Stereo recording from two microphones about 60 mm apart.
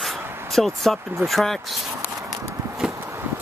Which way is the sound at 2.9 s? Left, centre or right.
Right.